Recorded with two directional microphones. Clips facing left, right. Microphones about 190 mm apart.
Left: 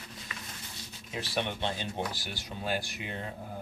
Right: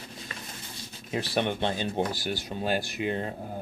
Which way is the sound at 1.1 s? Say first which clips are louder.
Right 6 dB; 50° right (ahead or behind).